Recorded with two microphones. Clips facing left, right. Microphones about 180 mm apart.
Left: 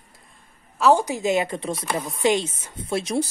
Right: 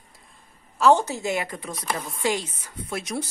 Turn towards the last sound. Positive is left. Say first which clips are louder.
# left 6 dB
turn(degrees=30)  # may be behind; listen again after turning